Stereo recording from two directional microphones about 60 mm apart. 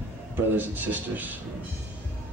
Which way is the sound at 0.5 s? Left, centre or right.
Right.